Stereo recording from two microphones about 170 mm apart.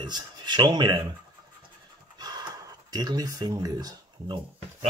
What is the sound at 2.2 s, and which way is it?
Pant, 25° right (ahead or behind).